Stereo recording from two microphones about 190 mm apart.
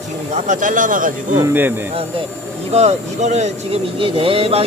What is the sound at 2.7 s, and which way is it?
Speech, 35° right (ahead or behind).